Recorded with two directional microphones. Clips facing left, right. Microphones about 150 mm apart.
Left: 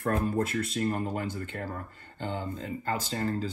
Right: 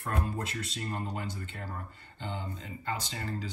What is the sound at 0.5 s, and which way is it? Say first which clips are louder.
Speech: left 8 dB; 50° left (ahead or behind).